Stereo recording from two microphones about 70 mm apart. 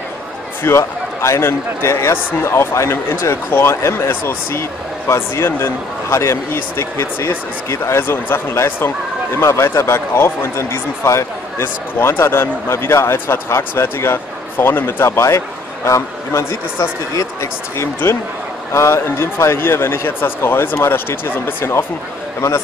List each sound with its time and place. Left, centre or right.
0.7 s speech: left